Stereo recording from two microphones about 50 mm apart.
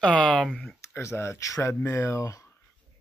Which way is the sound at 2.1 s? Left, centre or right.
Left.